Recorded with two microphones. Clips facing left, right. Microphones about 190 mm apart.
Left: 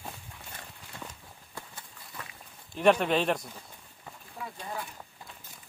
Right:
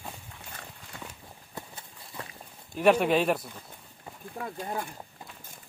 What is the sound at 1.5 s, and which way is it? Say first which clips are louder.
Clip-clop: right 3 dB; 20° right (ahead or behind).